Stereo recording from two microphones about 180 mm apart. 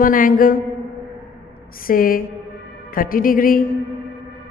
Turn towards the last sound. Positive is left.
turn(degrees=50)  # may be behind; listen again after turning